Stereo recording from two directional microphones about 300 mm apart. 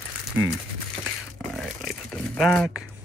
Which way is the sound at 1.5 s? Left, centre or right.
Centre.